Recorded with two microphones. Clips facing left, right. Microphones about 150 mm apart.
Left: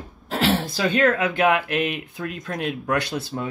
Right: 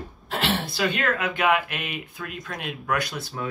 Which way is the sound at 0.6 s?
45° left (ahead or behind).